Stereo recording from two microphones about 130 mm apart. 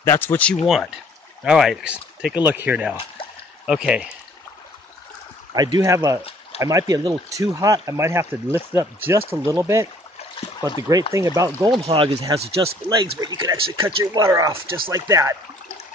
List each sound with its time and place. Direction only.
0.0 s speech: 20° left (ahead or behind)
0.7 s speech: 5° right (ahead or behind)
2.3 s speech: 15° right (ahead or behind)
5.5 s speech: 30° right (ahead or behind)
11.9 s speech: 45° right (ahead or behind)
12.9 s speech: 35° right (ahead or behind)